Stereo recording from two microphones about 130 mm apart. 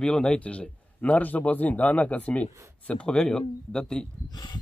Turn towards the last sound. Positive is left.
turn(degrees=35)  # may be behind; listen again after turning